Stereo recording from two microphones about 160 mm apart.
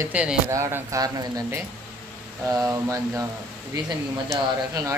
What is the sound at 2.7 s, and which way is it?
Speech, 20° right (ahead or behind).